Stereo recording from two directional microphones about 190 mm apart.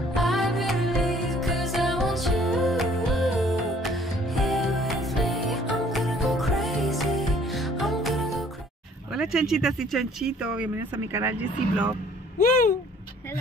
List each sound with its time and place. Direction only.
0.1 s music: centre (ahead or behind)
9.1 s speech: 5° right (ahead or behind)
12.4 s a sound: 45° left (ahead or behind)